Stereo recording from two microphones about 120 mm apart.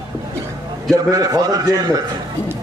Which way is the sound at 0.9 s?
30° right (ahead or behind).